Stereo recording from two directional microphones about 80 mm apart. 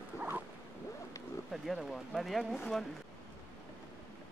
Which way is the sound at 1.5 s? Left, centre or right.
Centre.